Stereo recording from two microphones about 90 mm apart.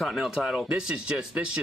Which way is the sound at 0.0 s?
5° right (ahead or behind).